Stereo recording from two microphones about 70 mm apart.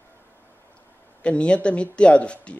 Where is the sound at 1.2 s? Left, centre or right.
Centre.